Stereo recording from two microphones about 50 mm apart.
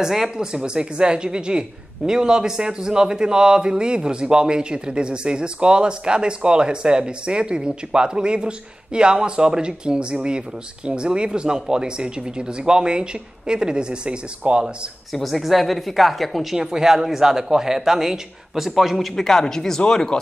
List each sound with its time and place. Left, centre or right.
0.0 s speech: centre
15.1 s speech: centre
19.1 s speech: centre